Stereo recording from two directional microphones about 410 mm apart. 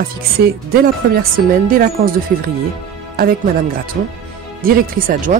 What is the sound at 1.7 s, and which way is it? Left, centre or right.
Speech, right.